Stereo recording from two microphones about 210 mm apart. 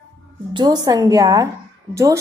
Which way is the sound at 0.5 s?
20° right (ahead or behind).